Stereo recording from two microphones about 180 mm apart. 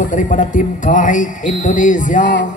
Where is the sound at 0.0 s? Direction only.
45° left (ahead or behind).